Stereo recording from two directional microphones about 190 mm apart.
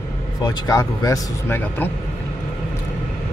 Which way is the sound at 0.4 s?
20° left (ahead or behind).